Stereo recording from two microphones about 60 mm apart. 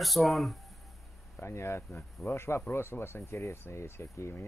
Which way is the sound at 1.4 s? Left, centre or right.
Left.